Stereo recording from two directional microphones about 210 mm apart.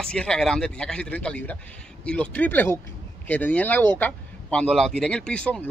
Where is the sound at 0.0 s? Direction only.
5° left (ahead or behind).